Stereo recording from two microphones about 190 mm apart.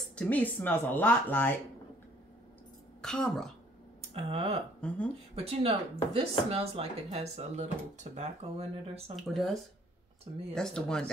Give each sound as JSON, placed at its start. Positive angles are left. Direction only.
{"t": 0.1, "sound": "speech", "side_deg": 5}
{"t": 3.0, "sound": "speech", "side_deg": 0}
{"t": 4.0, "sound": "speech", "side_deg": -35}
{"t": 4.8, "sound": "speech", "side_deg": 5}
{"t": 5.3, "sound": "speech", "side_deg": -30}
{"t": 9.1, "sound": "speech", "side_deg": 0}